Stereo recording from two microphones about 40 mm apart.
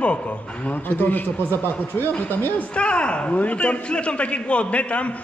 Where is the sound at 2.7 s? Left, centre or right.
Left.